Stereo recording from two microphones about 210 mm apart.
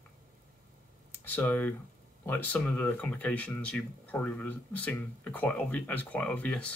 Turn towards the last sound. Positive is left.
turn(degrees=5)  # may be behind; listen again after turning